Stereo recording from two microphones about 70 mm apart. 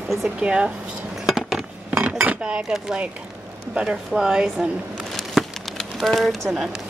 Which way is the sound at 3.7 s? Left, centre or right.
Centre.